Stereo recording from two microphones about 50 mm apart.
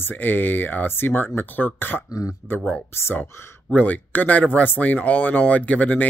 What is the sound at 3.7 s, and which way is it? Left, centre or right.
Speech, left.